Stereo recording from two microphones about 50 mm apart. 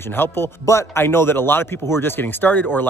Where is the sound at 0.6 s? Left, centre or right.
Left.